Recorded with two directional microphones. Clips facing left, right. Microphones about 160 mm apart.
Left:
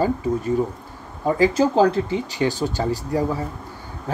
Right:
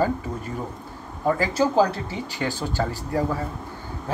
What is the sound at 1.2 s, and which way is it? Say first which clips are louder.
Speech: left 4 dB; 20° left (ahead or behind).